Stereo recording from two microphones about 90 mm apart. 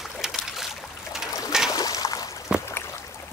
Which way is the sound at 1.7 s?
45° left (ahead or behind).